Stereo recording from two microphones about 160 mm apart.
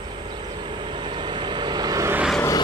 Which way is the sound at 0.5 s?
30° right (ahead or behind).